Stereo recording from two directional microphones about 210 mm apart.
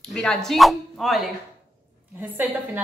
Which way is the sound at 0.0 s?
5° left (ahead or behind).